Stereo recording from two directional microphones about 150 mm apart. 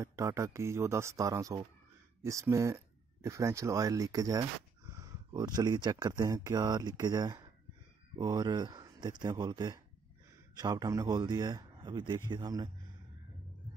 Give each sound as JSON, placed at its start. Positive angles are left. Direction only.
{"t": 0.0, "sound": "a man's voice", "side_deg": -20}